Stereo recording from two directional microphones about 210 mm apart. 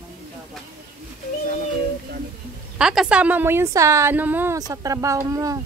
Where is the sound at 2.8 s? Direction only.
5° right (ahead or behind).